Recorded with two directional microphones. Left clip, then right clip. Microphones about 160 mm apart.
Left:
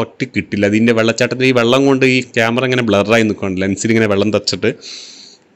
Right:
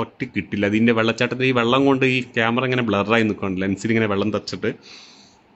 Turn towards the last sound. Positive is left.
turn(degrees=30)  # may be behind; listen again after turning